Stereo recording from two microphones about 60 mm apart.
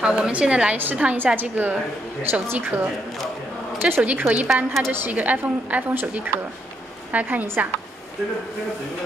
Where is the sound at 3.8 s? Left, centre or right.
Right.